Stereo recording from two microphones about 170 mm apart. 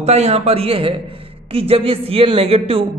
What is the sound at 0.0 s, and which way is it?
A woman's voice, 40° right (ahead or behind).